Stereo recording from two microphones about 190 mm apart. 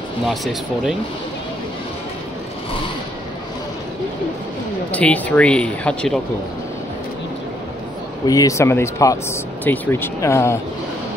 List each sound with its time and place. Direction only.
0.3 s speech: centre (ahead or behind)
4.9 s speech: 5° left (ahead or behind)
8.3 s speech: 15° left (ahead or behind)